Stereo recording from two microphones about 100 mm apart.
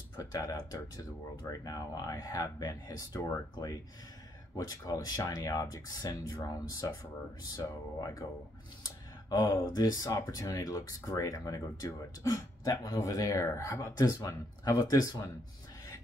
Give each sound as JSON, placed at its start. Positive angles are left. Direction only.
{"t": 0.2, "sound": "speech", "side_deg": 35}
{"t": 9.3, "sound": "speech", "side_deg": 35}